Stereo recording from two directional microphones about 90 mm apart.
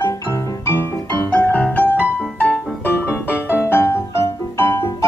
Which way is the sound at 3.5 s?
25° left (ahead or behind).